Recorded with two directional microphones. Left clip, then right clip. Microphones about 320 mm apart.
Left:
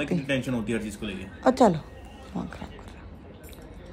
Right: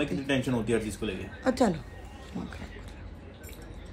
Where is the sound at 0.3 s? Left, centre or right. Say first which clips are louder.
Right 3 dB; centre.